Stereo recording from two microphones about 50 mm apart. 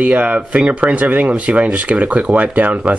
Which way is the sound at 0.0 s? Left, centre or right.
Right.